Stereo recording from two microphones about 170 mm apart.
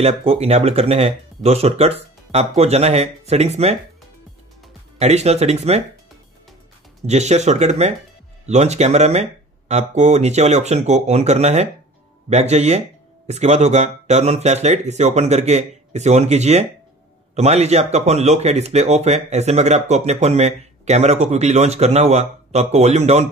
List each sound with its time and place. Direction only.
0.0 s speech: 35° right (ahead or behind)
4.9 s speech: 40° right (ahead or behind)
7.1 s speech: 40° right (ahead or behind)